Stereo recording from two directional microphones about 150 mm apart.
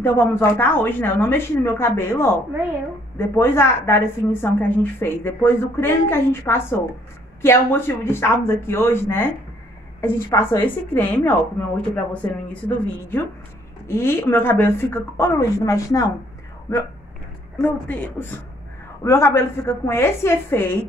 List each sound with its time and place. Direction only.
0.0 s a woman's voice: 15° left (ahead or behind)
13.8 s a woman's voice: 15° left (ahead or behind)
17.6 s a woman's voice: 10° left (ahead or behind)